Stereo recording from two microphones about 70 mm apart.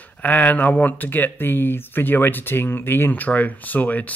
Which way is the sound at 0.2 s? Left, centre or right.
Left.